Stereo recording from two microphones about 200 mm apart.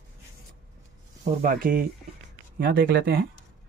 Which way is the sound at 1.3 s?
45° right (ahead or behind).